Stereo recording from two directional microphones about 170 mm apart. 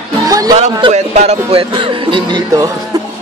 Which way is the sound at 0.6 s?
40° right (ahead or behind).